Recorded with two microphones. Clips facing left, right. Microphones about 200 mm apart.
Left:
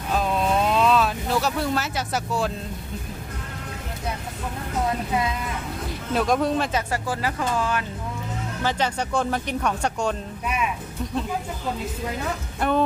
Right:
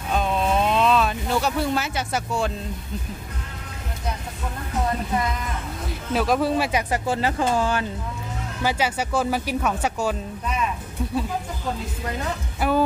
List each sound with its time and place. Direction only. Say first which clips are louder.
0.1 s vehicle: even; centre (ahead or behind)
5.9 s speech: even; centre (ahead or behind)
6.9 s speech: right 3 dB; 25° right (ahead or behind)
8.6 s speech: right 1 dB; 10° right (ahead or behind)
12.5 s music: right 1 dB; 5° right (ahead or behind)